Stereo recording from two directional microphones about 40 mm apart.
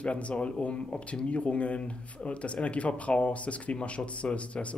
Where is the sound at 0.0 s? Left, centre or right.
Left.